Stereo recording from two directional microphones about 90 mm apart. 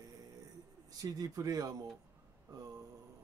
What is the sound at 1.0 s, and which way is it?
Speech, 45° right (ahead or behind).